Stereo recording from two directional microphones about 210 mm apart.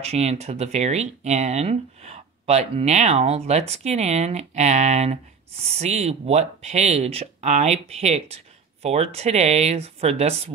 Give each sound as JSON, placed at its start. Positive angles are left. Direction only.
{"t": 0.0, "sound": "speech", "side_deg": -30}